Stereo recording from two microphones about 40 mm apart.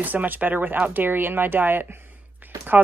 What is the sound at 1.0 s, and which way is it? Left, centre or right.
Speech, right.